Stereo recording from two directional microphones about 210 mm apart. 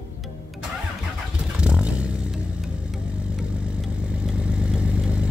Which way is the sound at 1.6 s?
5° right (ahead or behind).